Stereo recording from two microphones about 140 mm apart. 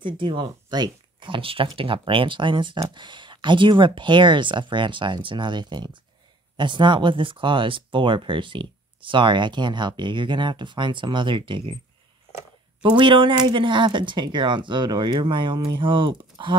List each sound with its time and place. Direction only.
0.0 s speech: 35° right (ahead or behind)
12.8 s speech: 35° right (ahead or behind)